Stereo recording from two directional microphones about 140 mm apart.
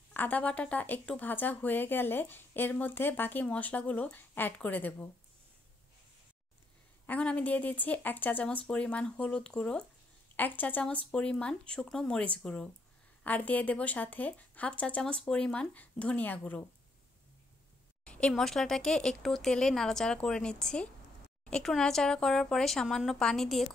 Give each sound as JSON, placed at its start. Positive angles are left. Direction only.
{"t": 0.1, "sound": "speech", "side_deg": 10}
{"t": 7.1, "sound": "speech", "side_deg": 10}
{"t": 18.0, "sound": "speech", "side_deg": 10}